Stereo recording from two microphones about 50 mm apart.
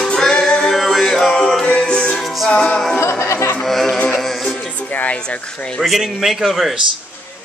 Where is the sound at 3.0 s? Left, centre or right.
Left.